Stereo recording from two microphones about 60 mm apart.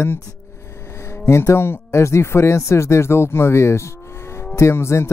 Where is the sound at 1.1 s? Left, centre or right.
Left.